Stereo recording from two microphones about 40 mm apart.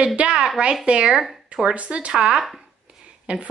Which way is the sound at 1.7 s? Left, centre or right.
Right.